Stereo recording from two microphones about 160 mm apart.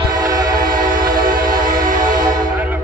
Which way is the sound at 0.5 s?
60° right (ahead or behind).